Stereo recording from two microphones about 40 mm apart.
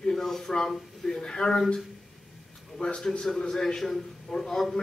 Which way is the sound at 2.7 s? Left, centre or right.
Centre.